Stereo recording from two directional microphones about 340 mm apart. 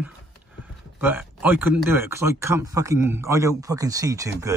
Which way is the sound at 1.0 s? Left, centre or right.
Centre.